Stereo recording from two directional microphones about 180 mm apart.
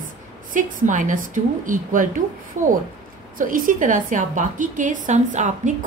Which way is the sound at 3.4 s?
50° right (ahead or behind).